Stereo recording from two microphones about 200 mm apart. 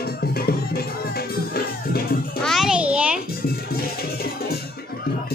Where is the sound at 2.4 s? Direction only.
Centre (ahead or behind).